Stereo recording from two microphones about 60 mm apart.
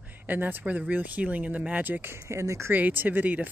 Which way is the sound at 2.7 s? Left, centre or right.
Right.